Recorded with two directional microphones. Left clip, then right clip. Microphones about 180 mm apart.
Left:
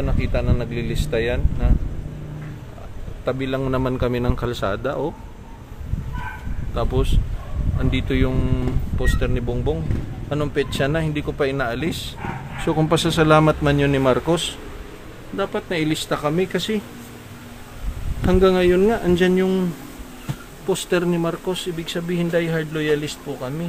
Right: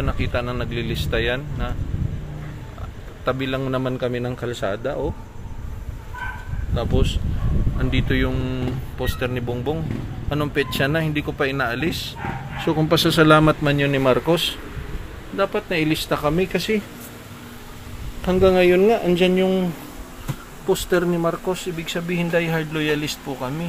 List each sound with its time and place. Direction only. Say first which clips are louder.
0.0 s speech: even; 10° left (ahead or behind)
3.3 s speech: even; 10° left (ahead or behind)
4.1 s speech: left 2 dB; 40° left (ahead or behind)
6.7 s speech: even; 25° left (ahead or behind)
18.2 s speech: even; 30° left (ahead or behind)
18.7 s speech: right 1 dB; 20° left (ahead or behind)
20.6 s speech: right 1 dB; 15° left (ahead or behind)